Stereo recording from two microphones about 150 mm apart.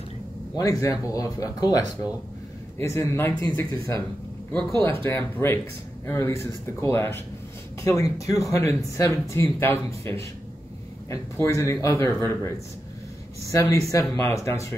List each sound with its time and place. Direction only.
0.6 s speech: 20° left (ahead or behind)
13.5 s speech: 20° left (ahead or behind)